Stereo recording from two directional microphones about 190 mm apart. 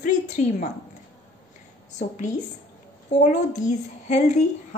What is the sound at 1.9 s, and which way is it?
Speech, 40° left (ahead or behind).